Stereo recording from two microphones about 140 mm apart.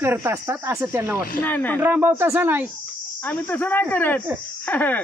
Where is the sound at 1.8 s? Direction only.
15° right (ahead or behind).